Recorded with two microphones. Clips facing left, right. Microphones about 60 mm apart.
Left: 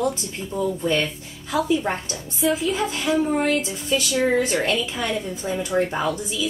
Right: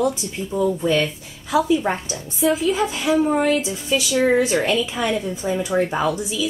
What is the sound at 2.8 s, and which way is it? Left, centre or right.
A woman's voice, centre.